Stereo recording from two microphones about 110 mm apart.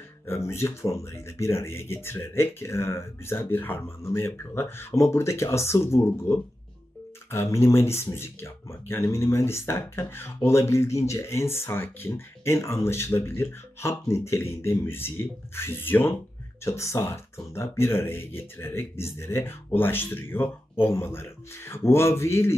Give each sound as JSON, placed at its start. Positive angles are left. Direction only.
{"t": 0.3, "sound": "speech", "side_deg": 25}